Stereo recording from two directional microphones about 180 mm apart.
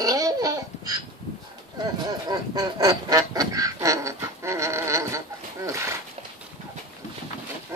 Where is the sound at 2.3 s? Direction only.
20° right (ahead or behind).